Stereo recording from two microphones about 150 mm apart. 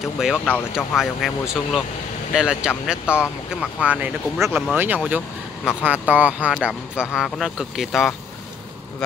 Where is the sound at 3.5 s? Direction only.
5° right (ahead or behind).